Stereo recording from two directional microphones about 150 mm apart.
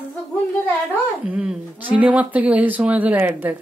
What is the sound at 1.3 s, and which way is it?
Speech, 5° right (ahead or behind).